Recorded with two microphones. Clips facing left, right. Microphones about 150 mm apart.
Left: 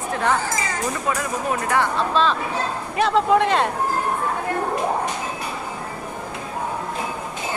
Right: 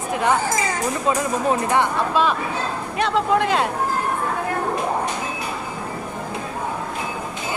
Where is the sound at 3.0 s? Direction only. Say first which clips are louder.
Left 2 dB; centre (ahead or behind).